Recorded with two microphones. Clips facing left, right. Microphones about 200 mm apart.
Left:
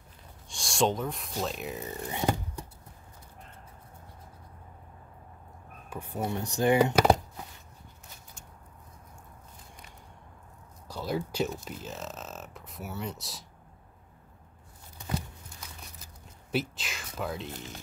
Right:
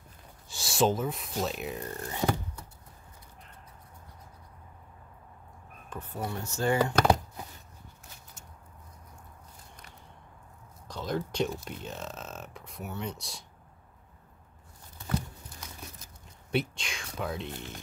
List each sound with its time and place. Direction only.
0.5 s speech: 5° right (ahead or behind)
2.1 s a sound: 20° left (ahead or behind)
5.9 s speech: 10° left (ahead or behind)
10.9 s speech: 10° left (ahead or behind)
16.5 s speech: 5° left (ahead or behind)